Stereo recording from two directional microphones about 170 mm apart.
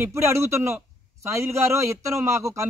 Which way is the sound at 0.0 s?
15° right (ahead or behind).